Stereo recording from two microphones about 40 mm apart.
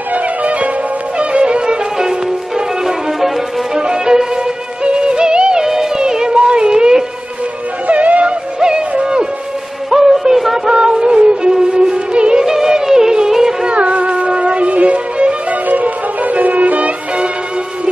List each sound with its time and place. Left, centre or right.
0.1 s music: right
2.0 s music: centre
3.7 s violin: centre
4.8 s music: right
5.9 s a sound: centre
7.8 s music: right
8.5 s music: right
9.8 s music: centre
10.7 s music: right
12.4 s music: centre
13.7 s music: right